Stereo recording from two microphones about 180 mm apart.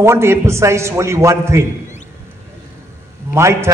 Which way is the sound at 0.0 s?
15° right (ahead or behind).